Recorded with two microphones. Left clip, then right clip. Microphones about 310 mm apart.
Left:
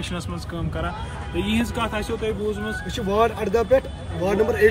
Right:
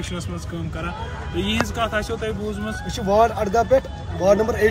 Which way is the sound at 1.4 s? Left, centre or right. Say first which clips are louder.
Right 2 dB; centre.